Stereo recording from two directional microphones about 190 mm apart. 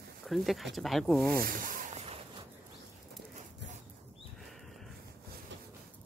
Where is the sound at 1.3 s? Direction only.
50° right (ahead or behind).